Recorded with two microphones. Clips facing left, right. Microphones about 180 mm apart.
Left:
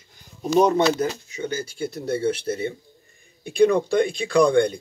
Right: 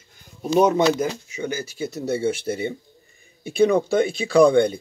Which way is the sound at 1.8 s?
25° right (ahead or behind).